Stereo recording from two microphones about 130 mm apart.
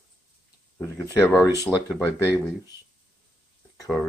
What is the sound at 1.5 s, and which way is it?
Speech, 20° right (ahead or behind).